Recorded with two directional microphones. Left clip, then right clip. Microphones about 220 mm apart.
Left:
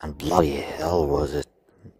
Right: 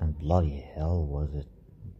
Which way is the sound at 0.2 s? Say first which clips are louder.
Left 9 dB; 50° left (ahead or behind).